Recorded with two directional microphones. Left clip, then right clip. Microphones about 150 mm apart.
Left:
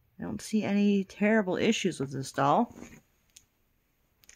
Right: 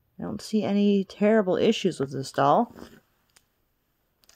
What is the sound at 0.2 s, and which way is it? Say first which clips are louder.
Speech: right 4 dB; 20° right (ahead or behind).